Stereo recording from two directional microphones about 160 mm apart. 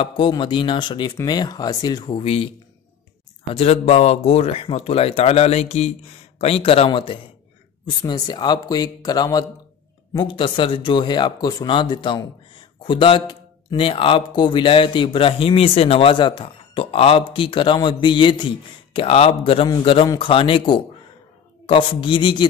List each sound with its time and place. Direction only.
0.0 s speech: 30° left (ahead or behind)
3.5 s speech: 40° left (ahead or behind)